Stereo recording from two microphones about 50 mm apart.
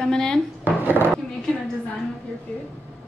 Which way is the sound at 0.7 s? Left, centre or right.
Right.